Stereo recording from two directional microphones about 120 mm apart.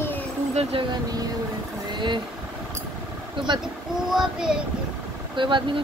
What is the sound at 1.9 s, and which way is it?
Vehicle, 40° right (ahead or behind).